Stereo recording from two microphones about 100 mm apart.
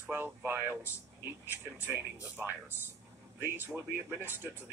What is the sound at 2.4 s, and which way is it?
Speech, 20° right (ahead or behind).